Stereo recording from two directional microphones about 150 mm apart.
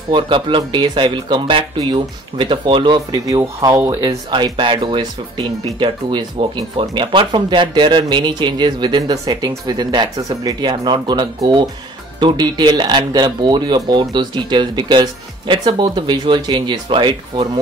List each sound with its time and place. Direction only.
0.1 s speech: 35° right (ahead or behind)